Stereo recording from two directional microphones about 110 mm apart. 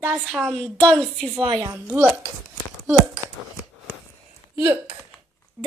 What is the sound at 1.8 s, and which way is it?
Speech, 15° right (ahead or behind).